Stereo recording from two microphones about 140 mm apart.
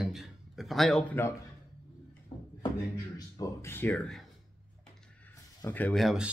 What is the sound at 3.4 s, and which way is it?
Speech, 20° left (ahead or behind).